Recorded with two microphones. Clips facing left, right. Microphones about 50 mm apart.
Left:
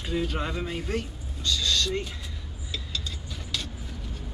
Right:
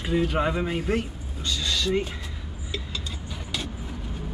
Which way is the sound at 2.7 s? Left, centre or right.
Centre.